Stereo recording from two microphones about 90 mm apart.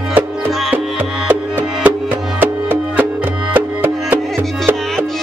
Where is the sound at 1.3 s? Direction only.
20° right (ahead or behind).